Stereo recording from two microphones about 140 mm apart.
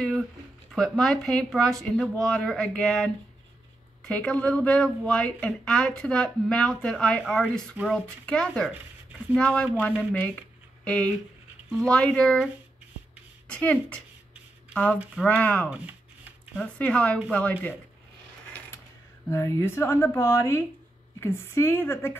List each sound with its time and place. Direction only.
0.0 s speech: centre (ahead or behind)
13.5 s speech: 10° left (ahead or behind)
19.3 s speech: 20° left (ahead or behind)